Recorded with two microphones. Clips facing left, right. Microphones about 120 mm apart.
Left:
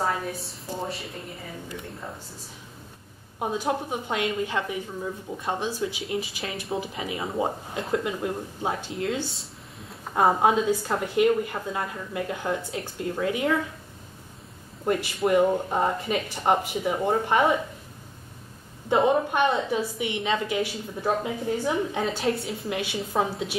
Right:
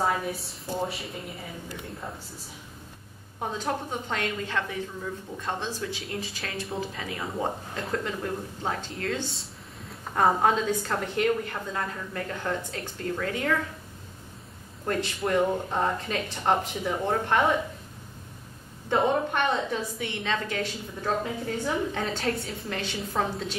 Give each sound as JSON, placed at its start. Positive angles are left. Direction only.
{"t": 0.0, "sound": "a woman's voice", "side_deg": 0}
{"t": 3.3, "sound": "a woman's voice", "side_deg": 10}
{"t": 6.0, "sound": "a woman's voice", "side_deg": 0}
{"t": 7.0, "sound": "a woman's voice", "side_deg": 15}
{"t": 15.1, "sound": "a woman's voice", "side_deg": 10}
{"t": 18.9, "sound": "a woman's voice", "side_deg": 5}
{"t": 22.0, "sound": "a woman's voice", "side_deg": 0}